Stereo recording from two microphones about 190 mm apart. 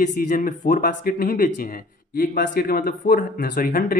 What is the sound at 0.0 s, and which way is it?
Speech, 45° left (ahead or behind).